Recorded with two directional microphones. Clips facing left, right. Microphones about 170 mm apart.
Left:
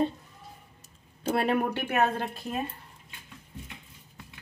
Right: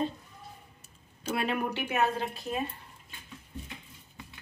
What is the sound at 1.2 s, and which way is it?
Speech, 55° left (ahead or behind).